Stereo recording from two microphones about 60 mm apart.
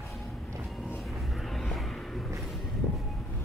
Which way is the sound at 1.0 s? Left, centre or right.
Centre.